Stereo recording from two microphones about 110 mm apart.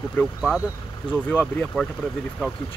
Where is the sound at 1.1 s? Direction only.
50° left (ahead or behind).